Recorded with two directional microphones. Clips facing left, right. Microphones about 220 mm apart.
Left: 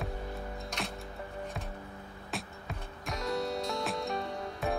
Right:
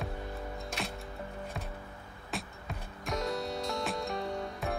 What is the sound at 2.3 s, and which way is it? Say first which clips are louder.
Music: right 1 dB; centre (ahead or behind).